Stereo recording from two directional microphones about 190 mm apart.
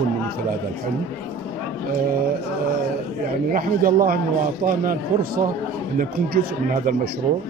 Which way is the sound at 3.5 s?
50° right (ahead or behind).